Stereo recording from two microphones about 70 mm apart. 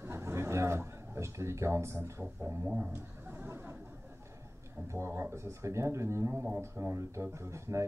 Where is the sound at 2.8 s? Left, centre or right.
Right.